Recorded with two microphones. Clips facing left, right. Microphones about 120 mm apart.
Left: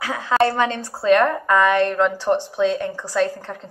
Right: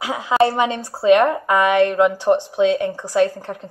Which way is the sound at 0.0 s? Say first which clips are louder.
Right 2 dB; 15° right (ahead or behind).